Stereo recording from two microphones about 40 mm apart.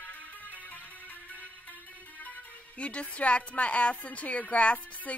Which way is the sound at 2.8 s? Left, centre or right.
Left.